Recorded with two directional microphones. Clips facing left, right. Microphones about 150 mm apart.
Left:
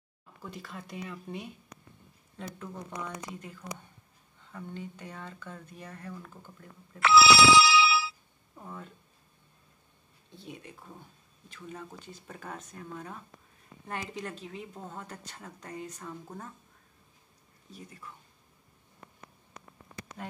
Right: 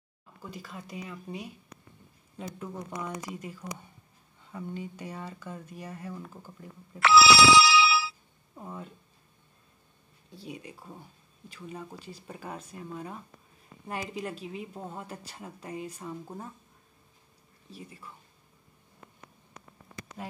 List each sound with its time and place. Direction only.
0.4 s a woman's voice: centre (ahead or behind)
7.0 s ringtone: 90° right
8.5 s a woman's voice: 15° right (ahead or behind)
10.3 s a woman's voice: 10° right (ahead or behind)
17.6 s speech: 5° right (ahead or behind)
20.2 s a woman's voice: 5° right (ahead or behind)